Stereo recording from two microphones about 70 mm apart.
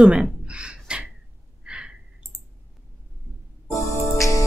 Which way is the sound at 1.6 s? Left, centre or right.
Centre.